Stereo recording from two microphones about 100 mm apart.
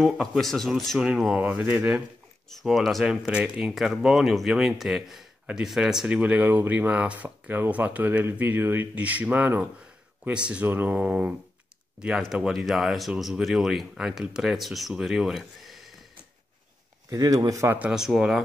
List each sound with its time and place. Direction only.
0.0 s speech: centre (ahead or behind)
1.4 s speech: 15° right (ahead or behind)
2.6 s speech: centre (ahead or behind)
12.4 s speech: 5° right (ahead or behind)
17.1 s speech: 40° right (ahead or behind)
17.7 s speech: 10° right (ahead or behind)